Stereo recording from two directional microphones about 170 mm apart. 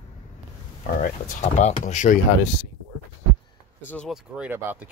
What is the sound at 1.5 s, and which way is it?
Speech, 45° left (ahead or behind).